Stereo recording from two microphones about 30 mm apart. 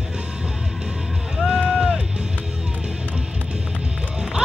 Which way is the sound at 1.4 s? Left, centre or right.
Left.